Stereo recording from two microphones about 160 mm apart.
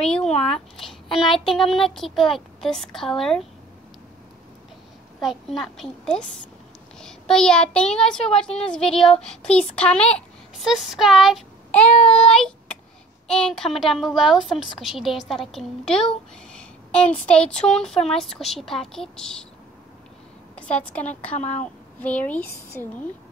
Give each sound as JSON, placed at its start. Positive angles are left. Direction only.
{"t": 0.0, "sound": "a sound", "side_deg": 5}
{"t": 0.4, "sound": "a woman's voice", "side_deg": 5}
{"t": 5.2, "sound": "a woman's voice", "side_deg": 0}
{"t": 13.3, "sound": "a woman's voice", "side_deg": 5}
{"t": 20.5, "sound": "a woman's voice", "side_deg": 5}
{"t": 21.4, "sound": "speech", "side_deg": 45}
{"t": 22.0, "sound": "speech", "side_deg": 10}